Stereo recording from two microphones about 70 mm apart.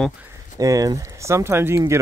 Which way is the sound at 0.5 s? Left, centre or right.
Right.